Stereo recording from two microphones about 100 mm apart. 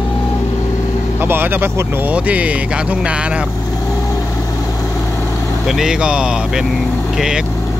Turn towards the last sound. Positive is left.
turn(degrees=-5)  # may be behind; listen again after turning